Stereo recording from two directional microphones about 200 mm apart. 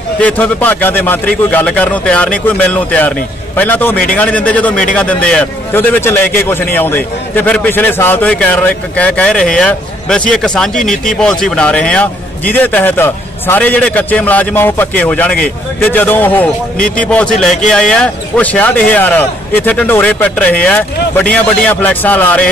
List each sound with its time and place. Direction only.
0.2 s speech: 5° left (ahead or behind)
16.7 s a man's voice: 45° left (ahead or behind)
17.0 s a man's voice: 5° left (ahead or behind)